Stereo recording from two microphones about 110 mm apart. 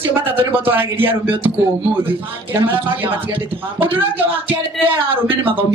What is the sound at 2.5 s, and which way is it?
Speech, 20° right (ahead or behind).